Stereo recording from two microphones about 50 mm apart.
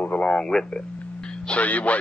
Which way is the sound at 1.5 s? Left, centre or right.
Left.